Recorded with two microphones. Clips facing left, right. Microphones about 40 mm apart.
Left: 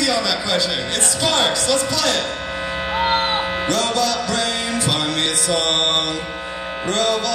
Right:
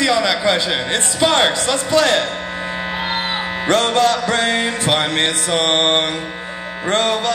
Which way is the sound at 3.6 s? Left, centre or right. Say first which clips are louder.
Right 8 dB; right.